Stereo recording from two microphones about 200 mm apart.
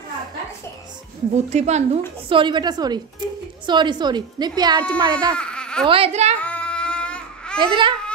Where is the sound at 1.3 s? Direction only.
35° right (ahead or behind).